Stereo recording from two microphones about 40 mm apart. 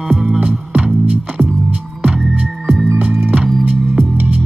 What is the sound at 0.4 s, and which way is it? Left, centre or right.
Music, right.